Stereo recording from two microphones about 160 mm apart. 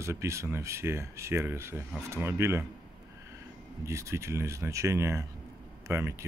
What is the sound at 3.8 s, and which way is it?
Speech, 15° right (ahead or behind).